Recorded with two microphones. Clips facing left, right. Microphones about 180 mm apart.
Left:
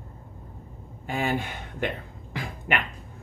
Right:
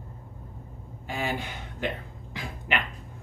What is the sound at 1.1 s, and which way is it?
Speech, 50° left (ahead or behind).